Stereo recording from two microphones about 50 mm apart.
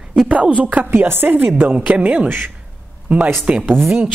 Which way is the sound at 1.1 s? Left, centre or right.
Right.